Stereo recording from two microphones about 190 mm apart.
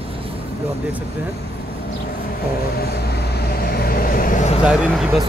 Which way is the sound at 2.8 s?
55° left (ahead or behind).